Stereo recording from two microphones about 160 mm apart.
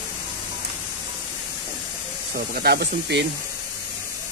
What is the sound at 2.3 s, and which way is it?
Speech, 70° right (ahead or behind).